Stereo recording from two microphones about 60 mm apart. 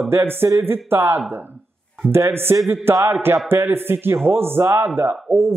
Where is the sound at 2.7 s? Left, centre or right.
Right.